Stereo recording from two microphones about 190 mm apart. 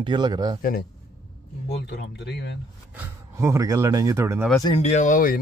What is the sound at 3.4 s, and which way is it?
Speech, 15° right (ahead or behind).